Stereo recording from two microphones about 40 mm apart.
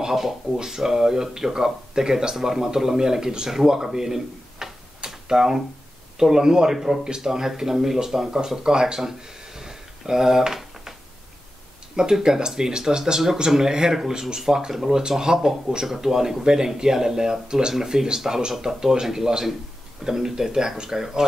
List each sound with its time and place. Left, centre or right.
0.0 s speech: centre
9.6 s a sound: centre
11.9 s speech: centre